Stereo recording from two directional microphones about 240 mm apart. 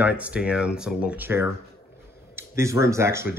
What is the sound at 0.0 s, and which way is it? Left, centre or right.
Speech, centre.